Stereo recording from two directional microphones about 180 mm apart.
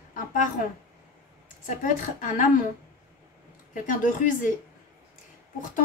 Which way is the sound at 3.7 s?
45° left (ahead or behind).